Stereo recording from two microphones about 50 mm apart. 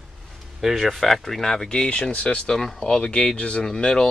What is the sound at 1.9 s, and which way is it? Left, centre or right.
Speech, left.